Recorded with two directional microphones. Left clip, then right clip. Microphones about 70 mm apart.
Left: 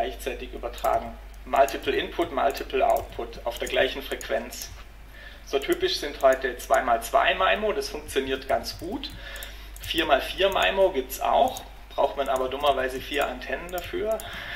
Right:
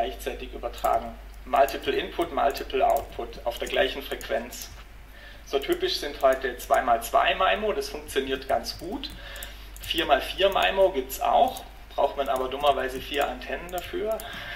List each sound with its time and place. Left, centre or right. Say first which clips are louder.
0.0 s speech: even; left
6.1 s speech: left 2 dB; left
6.4 s speech: even; left